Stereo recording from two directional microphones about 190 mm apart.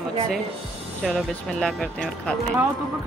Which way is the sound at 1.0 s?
Centre (ahead or behind).